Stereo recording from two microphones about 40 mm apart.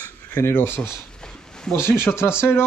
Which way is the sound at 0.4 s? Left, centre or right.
Left.